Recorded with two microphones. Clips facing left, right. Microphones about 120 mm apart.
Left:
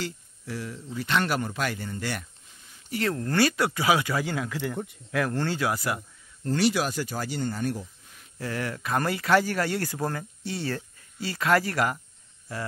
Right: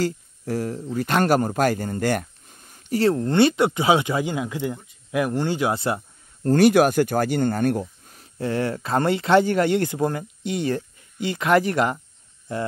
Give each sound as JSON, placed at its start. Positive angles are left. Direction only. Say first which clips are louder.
{"t": 0.0, "sound": "speech", "louder": "right 10 dB", "side_deg": -45}
{"t": 3.0, "sound": "speech", "louder": "right 7 dB", "side_deg": -25}
{"t": 6.4, "sound": "speech", "louder": "right 9 dB", "side_deg": -50}
{"t": 8.4, "sound": "speech", "louder": "right 7 dB", "side_deg": -25}